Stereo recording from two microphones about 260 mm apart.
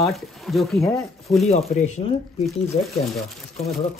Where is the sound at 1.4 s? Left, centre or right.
Left.